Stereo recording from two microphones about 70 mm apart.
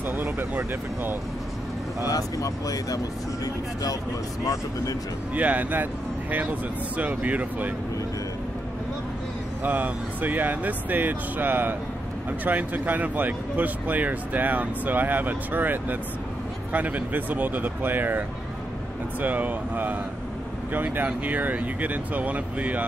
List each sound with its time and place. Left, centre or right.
0.1 s vehicle: right
2.0 s speech: left
5.3 s speech: right
7.0 s speech: right
9.6 s speech: right
19.2 s speech: right